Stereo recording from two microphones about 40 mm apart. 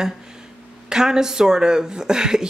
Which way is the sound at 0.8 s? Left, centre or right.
Centre.